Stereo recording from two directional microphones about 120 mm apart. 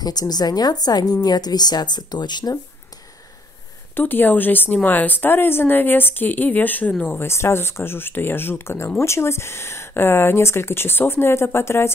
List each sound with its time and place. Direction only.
0.0 s speech: 35° left (ahead or behind)
3.9 s speech: 15° left (ahead or behind)